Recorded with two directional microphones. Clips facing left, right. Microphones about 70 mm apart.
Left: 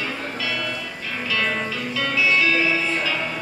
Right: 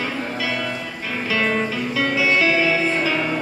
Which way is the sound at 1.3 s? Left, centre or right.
Centre.